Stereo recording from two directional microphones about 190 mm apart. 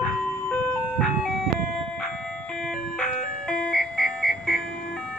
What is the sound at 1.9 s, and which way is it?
Vehicle, 5° left (ahead or behind).